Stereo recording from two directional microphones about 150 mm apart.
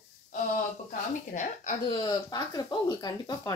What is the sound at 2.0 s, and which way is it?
Speech, 30° left (ahead or behind).